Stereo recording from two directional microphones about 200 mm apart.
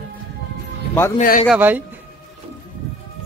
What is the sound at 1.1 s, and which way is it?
Speech, 40° left (ahead or behind).